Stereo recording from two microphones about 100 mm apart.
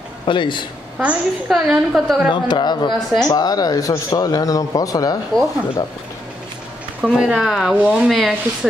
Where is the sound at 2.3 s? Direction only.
50° left (ahead or behind).